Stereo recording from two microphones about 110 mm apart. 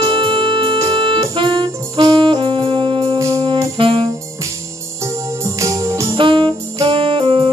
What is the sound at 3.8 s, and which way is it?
Music, 50° right (ahead or behind).